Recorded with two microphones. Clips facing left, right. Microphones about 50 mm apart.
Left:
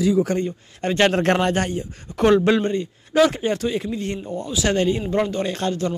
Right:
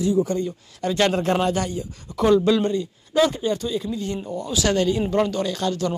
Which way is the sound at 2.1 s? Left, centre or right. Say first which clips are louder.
Left 1 dB; left.